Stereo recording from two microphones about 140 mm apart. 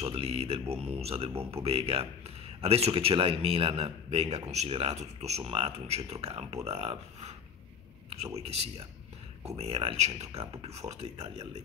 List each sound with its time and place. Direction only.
0.1 s speech: 45° right (ahead or behind)
8.4 s speech: 45° right (ahead or behind)